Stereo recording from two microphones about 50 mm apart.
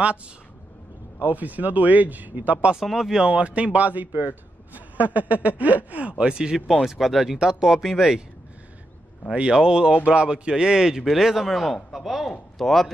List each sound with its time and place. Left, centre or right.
1.2 s speech: right
2.7 s a man's voice: centre
3.3 s speech: right
6.7 s a man's voice: centre
9.3 s a man's voice: centre